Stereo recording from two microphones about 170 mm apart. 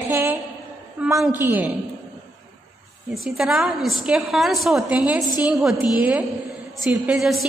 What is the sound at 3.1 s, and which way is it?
A woman's voice, centre (ahead or behind).